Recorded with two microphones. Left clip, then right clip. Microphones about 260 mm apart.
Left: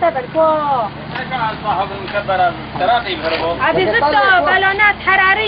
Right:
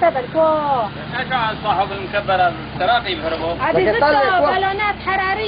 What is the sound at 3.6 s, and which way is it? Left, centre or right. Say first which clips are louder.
Speech: left 1 dB; centre.